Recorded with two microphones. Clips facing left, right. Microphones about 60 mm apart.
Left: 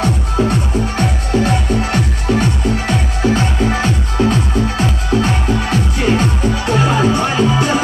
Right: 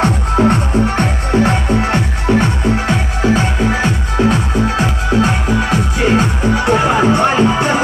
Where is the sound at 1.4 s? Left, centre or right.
Right.